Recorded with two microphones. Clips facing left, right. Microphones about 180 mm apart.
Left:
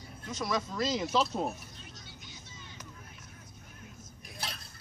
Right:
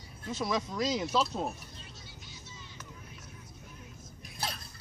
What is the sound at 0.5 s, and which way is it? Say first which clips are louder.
Speech: even; 10° right (ahead or behind).